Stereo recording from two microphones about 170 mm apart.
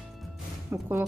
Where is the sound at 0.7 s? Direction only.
15° right (ahead or behind).